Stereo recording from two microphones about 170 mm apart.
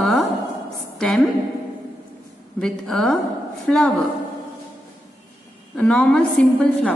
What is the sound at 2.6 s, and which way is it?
A woman's voice, 5° left (ahead or behind).